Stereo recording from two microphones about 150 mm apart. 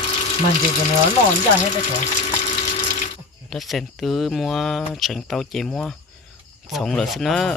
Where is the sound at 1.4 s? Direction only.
50° left (ahead or behind).